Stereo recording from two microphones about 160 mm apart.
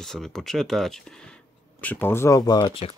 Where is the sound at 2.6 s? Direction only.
35° left (ahead or behind).